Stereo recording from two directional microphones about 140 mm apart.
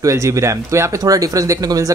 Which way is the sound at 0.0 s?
20° right (ahead or behind).